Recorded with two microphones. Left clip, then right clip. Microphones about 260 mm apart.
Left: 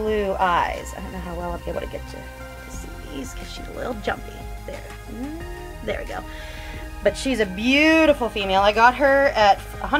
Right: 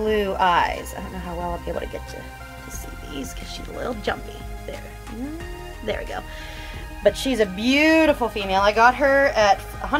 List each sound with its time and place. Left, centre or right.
0.0 s speech: centre
3.8 s speech: centre
5.9 s speech: centre